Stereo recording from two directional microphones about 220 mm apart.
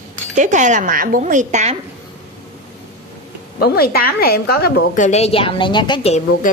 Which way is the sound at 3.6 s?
45° left (ahead or behind).